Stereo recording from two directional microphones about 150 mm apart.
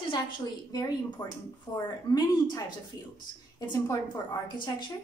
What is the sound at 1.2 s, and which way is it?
Speech, 15° left (ahead or behind).